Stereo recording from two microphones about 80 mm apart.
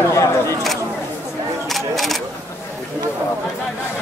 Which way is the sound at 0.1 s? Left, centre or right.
Left.